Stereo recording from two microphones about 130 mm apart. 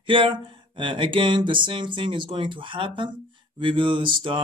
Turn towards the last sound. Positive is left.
turn(degrees=-40)  # may be behind; listen again after turning